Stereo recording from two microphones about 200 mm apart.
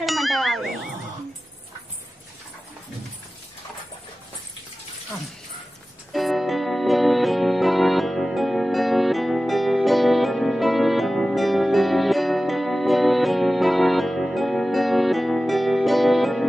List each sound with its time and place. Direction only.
0.0 s ding: centre (ahead or behind)
6.1 s music: centre (ahead or behind)